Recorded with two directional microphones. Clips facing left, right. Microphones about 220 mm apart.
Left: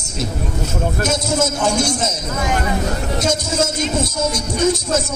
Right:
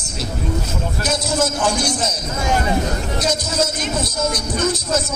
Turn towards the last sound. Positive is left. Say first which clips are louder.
# left 3 dB
turn(degrees=25)  # may be behind; listen again after turning